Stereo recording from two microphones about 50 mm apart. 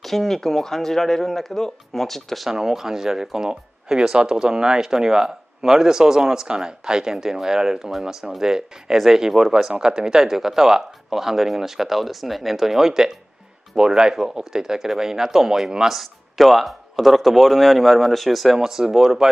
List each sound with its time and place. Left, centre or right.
0.0 s speech: centre